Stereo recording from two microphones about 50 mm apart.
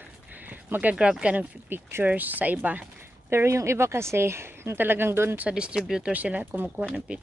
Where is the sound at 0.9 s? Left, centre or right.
Centre.